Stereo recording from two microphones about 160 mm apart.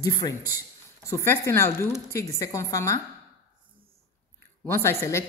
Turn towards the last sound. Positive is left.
turn(degrees=15)  # may be behind; listen again after turning